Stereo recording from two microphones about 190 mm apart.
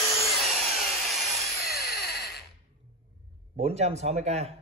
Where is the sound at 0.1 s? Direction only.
Centre (ahead or behind).